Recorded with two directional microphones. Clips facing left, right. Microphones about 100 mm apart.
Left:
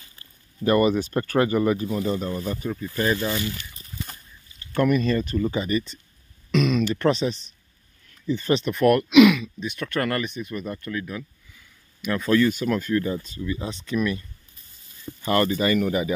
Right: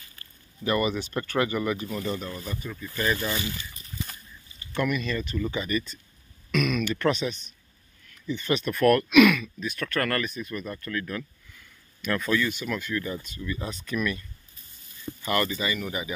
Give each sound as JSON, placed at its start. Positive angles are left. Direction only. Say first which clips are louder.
{"t": 0.7, "sound": "speech", "louder": "left 6 dB", "side_deg": 45}
{"t": 3.3, "sound": "speech", "louder": "left 4 dB", "side_deg": -15}
{"t": 4.7, "sound": "speech", "louder": "left 7 dB", "side_deg": 40}
{"t": 8.6, "sound": "speech", "louder": "even", "side_deg": 20}
{"t": 12.3, "sound": "speech", "louder": "left 9 dB", "side_deg": 40}
{"t": 15.2, "sound": "speech", "louder": "left 5 dB", "side_deg": 35}
{"t": 15.5, "sound": "speech", "louder": "left 8 dB", "side_deg": 50}